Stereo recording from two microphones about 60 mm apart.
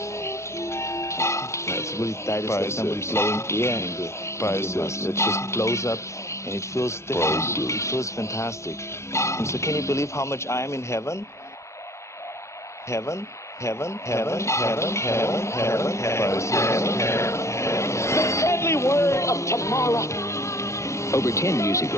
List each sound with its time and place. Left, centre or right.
0.2 s speech: left
12.9 s speech: left